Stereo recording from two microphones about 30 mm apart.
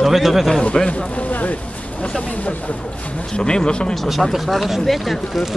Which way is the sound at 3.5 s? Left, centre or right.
Left.